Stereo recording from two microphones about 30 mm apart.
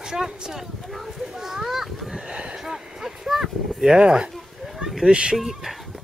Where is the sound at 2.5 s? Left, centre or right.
Centre.